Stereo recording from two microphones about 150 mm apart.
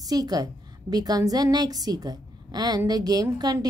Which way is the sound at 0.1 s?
25° right (ahead or behind).